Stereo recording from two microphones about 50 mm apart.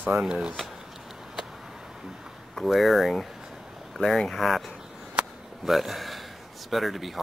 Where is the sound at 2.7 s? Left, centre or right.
Centre.